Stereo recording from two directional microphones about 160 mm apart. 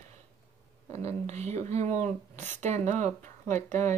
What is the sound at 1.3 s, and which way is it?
Speech, 40° right (ahead or behind).